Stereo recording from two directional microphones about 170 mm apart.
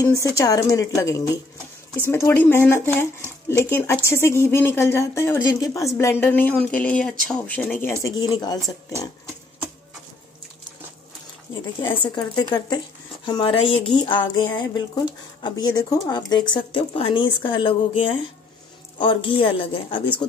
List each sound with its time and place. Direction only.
0.0 s speech: 20° left (ahead or behind)
8.0 s speech: 25° left (ahead or behind)
11.9 s a woman's voice: 30° left (ahead or behind)